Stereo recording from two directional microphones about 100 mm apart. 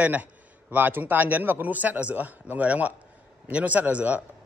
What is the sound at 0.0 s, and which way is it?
A man's voice, 15° right (ahead or behind).